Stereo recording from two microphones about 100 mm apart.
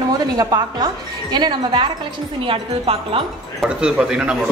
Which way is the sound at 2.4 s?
65° right (ahead or behind).